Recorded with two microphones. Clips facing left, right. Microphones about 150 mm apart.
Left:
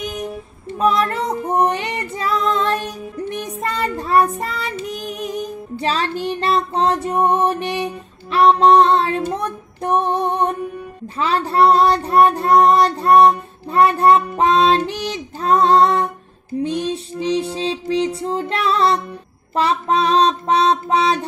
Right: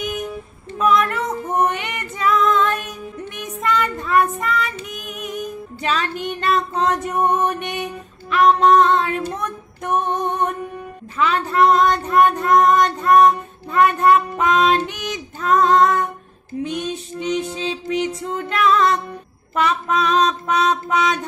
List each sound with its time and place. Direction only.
0.0 s female singing: 35° left (ahead or behind)
9.3 s child singing: 30° left (ahead or behind)